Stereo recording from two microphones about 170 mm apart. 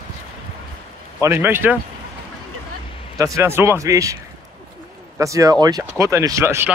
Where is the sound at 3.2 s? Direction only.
20° right (ahead or behind).